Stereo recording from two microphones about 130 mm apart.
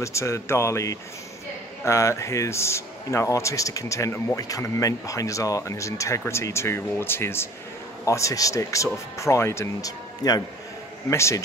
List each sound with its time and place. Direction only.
0.0 s speech: 20° left (ahead or behind)